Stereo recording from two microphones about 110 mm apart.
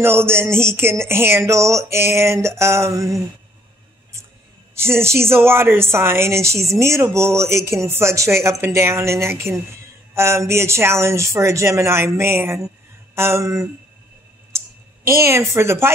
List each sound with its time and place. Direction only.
0.0 s music: 20° right (ahead or behind)
4.7 s music: 25° right (ahead or behind)
12.2 s speech: 20° right (ahead or behind)
15.0 s music: 25° right (ahead or behind)